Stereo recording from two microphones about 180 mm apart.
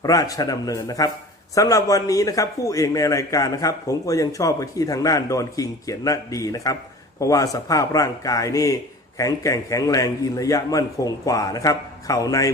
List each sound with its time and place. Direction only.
0.0 s a man's voice: 20° left (ahead or behind)